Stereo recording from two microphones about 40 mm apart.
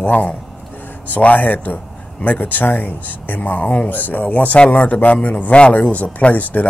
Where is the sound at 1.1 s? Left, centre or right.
Left.